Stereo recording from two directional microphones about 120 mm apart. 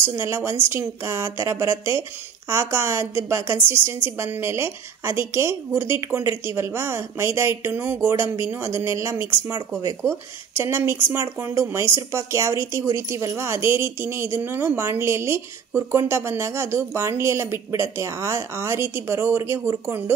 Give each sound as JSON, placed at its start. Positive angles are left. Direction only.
{"t": 0.0, "sound": "speech", "side_deg": -20}